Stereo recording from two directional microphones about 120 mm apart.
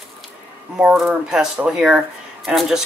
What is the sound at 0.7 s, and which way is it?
Speech, 5° right (ahead or behind).